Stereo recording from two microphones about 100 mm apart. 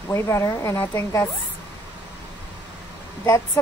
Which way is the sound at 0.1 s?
30° left (ahead or behind).